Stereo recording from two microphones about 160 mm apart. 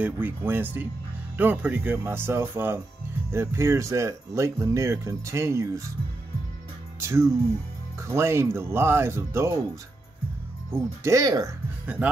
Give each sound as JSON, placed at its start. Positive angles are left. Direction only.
{"t": 0.0, "sound": "speech", "side_deg": -10}
{"t": 7.0, "sound": "speech", "side_deg": -15}
{"t": 10.7, "sound": "speech", "side_deg": -20}
{"t": 11.8, "sound": "speech", "side_deg": -10}